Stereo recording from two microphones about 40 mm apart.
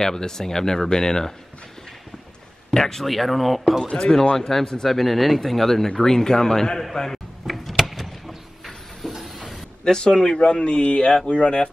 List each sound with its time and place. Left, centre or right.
0.0 s speech: centre
2.7 s speech: centre
3.8 s speech: left
6.8 s door: centre
9.8 s speech: centre